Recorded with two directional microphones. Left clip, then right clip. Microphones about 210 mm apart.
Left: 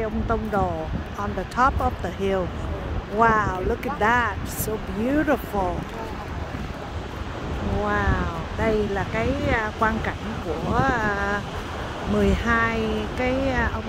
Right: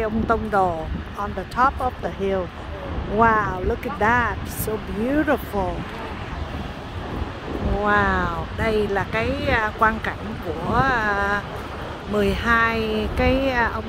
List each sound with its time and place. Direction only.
0.0 s speech: 15° right (ahead or behind)
1.2 s speech: 5° right (ahead or behind)
7.8 s speech: 15° right (ahead or behind)